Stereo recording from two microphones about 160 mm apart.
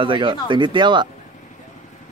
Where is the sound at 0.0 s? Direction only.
30° right (ahead or behind).